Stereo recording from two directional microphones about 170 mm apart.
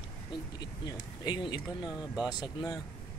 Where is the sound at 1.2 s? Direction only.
25° left (ahead or behind).